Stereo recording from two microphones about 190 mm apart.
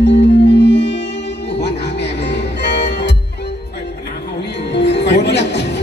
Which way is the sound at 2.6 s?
65° left (ahead or behind).